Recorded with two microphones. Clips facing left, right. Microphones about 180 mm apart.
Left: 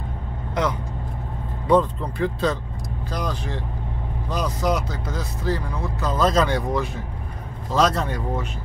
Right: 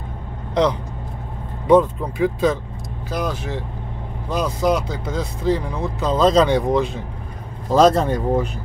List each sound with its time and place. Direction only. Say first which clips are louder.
1.7 s speech: right 4 dB; 15° right (ahead or behind)
7.7 s a man's voice: right 7 dB; 45° right (ahead or behind)
8.0 s speech: right 7 dB; 30° right (ahead or behind)